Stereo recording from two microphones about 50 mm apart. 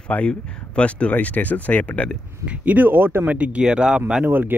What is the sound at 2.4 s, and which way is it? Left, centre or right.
Speech, right.